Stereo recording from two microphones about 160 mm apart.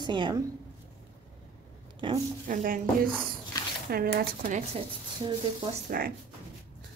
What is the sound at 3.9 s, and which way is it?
Speech, 70° right (ahead or behind).